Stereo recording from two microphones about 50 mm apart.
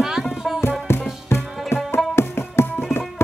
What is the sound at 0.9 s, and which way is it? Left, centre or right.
Tabla, left.